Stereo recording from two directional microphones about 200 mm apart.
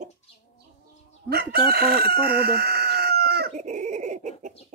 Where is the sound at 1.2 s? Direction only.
50° right (ahead or behind).